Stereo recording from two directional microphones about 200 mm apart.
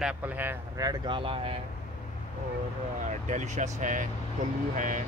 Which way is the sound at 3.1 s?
35° right (ahead or behind).